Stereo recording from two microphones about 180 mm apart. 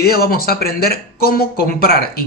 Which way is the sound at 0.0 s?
55° left (ahead or behind).